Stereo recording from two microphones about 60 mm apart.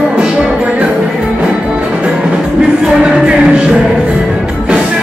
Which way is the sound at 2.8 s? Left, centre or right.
Centre.